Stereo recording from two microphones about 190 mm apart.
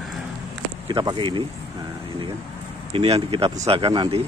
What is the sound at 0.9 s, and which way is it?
Speech, 25° right (ahead or behind).